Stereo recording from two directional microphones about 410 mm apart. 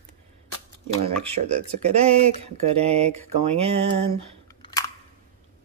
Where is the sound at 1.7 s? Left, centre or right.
Centre.